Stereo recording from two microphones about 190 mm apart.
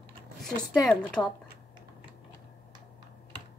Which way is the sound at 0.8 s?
5° left (ahead or behind).